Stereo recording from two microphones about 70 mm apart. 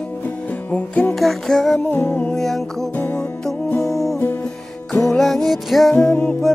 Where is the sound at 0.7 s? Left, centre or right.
Left.